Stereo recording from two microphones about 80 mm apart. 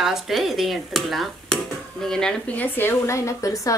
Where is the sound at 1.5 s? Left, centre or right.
Centre.